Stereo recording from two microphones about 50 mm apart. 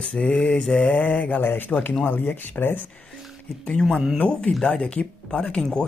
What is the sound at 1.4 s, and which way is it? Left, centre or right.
Speech, left.